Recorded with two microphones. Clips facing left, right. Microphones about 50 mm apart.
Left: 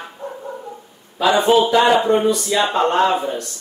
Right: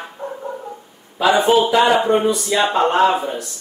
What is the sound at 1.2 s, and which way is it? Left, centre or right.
A man's voice, centre.